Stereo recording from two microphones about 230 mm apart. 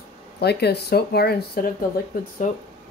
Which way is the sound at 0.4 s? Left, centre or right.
Left.